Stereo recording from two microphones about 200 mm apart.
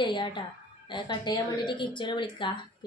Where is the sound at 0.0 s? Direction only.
25° left (ahead or behind).